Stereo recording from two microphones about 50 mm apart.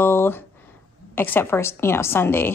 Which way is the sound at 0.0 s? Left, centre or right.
Left.